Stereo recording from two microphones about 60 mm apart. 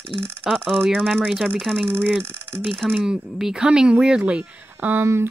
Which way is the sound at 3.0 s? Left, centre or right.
Centre.